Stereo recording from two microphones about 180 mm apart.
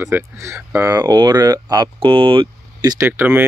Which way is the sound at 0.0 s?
15° right (ahead or behind).